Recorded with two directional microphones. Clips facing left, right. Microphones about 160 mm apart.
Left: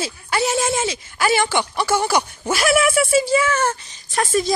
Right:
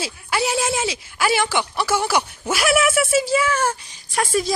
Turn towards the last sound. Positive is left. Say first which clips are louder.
# left 1 dB
turn(degrees=-5)  # may be behind; listen again after turning